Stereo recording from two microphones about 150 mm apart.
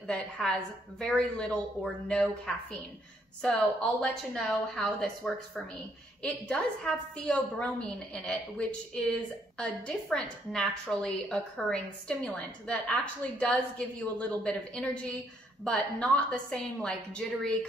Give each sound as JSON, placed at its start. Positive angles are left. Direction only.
{"t": 0.0, "sound": "a woman's voice", "side_deg": 5}
{"t": 4.3, "sound": "a woman's voice", "side_deg": 5}